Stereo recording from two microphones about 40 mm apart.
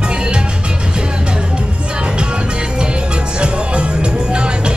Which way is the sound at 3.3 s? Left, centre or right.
Right.